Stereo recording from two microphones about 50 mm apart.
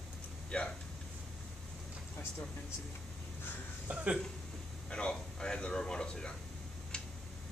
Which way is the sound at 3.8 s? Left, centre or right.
Right.